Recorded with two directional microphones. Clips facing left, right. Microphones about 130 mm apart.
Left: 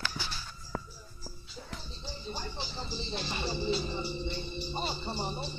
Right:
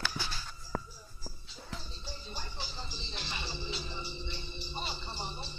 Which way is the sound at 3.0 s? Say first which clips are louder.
Left 8 dB; 40° left (ahead or behind).